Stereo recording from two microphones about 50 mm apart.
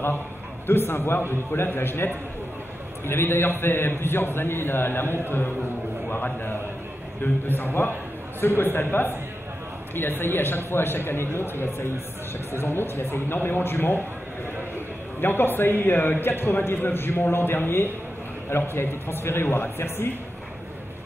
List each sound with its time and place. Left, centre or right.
0.7 s a man's voice: left
15.1 s a man's voice: left